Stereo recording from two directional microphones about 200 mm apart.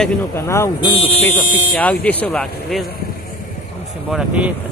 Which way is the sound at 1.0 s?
30° left (ahead or behind).